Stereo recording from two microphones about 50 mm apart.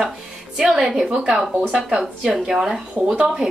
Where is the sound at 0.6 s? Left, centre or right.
Centre.